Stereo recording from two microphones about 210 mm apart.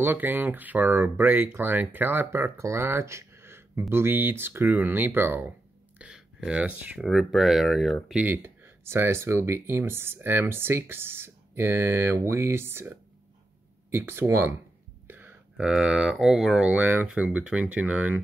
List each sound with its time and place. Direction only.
0.0 s speech: 10° right (ahead or behind)